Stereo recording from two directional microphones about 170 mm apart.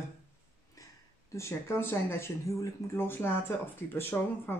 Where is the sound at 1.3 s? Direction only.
15° left (ahead or behind).